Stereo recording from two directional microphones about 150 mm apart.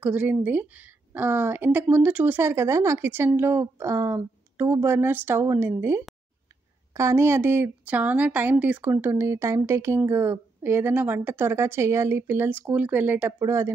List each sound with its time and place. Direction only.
0.0 s a woman's voice: 10° right (ahead or behind)